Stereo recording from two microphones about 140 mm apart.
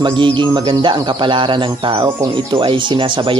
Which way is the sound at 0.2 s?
35° right (ahead or behind).